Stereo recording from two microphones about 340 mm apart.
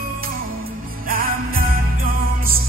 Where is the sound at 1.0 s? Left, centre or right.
Right.